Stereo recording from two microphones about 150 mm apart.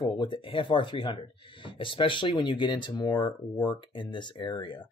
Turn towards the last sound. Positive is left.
turn(degrees=35)  # may be behind; listen again after turning